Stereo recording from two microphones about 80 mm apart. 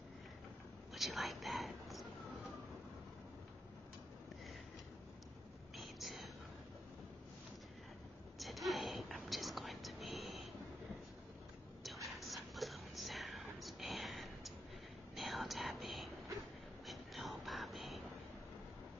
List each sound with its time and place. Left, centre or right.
0.9 s speech: centre
5.8 s whispering: centre
8.4 s whispering: centre
11.8 s whispering: centre
16.8 s vehicle: centre